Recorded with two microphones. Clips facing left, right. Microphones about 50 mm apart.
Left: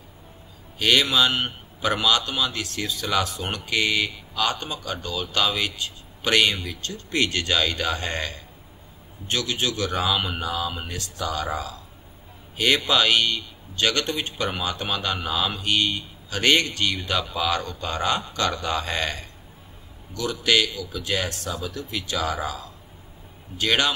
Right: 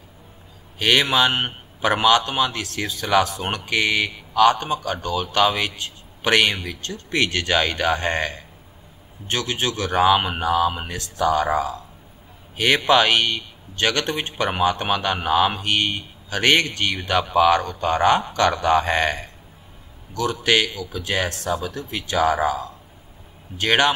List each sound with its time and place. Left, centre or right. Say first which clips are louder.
0.7 s a man's voice: right 2 dB; right
20.2 s a man's voice: right 2 dB; right